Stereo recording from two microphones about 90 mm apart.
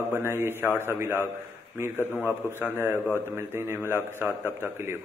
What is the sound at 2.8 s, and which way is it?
A man's voice, 25° right (ahead or behind).